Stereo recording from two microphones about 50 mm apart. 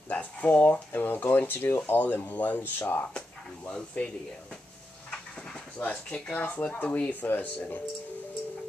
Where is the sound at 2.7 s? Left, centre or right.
Left.